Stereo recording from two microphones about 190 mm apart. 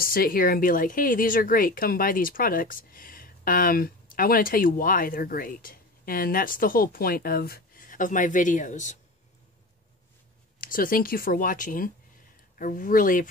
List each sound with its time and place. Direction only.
0.0 s a woman's voice: 50° left (ahead or behind)
10.6 s a woman's voice: 45° left (ahead or behind)